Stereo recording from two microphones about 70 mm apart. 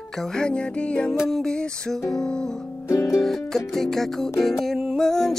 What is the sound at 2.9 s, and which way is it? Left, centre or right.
Music, left.